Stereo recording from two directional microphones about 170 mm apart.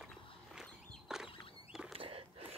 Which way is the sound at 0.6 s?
5° right (ahead or behind).